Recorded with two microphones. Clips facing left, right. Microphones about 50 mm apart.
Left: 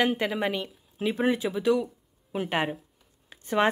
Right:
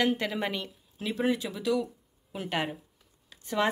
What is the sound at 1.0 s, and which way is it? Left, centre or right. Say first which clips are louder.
Speech: left 3 dB; left.